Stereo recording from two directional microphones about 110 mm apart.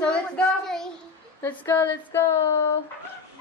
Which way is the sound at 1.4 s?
20° left (ahead or behind).